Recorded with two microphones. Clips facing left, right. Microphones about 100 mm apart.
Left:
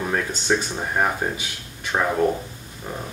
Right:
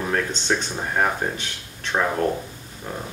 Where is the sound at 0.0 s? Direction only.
5° left (ahead or behind).